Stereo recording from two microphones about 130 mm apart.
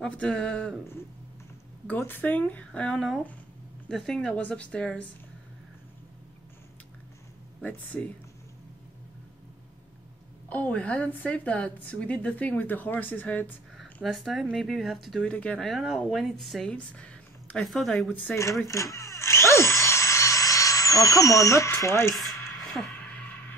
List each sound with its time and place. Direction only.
0.0 s a woman's voice: 5° left (ahead or behind)
1.9 s a woman's voice: 15° left (ahead or behind)
7.6 s a woman's voice: 10° left (ahead or behind)
10.5 s a woman's voice: 10° left (ahead or behind)
14.0 s speech: centre (ahead or behind)
18.7 s drill: 25° left (ahead or behind)
22.1 s a sound: centre (ahead or behind)